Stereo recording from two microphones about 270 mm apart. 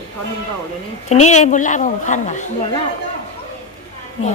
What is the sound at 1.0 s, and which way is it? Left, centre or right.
A woman's voice, left.